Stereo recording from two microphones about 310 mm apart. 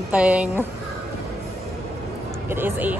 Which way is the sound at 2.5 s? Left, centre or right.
Centre.